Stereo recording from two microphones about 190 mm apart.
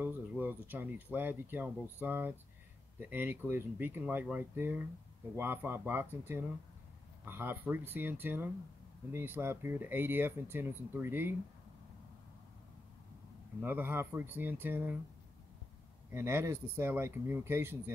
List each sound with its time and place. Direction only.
0.0 s speech: 10° right (ahead or behind)
13.6 s speech: 10° right (ahead or behind)
16.1 s speech: 15° right (ahead or behind)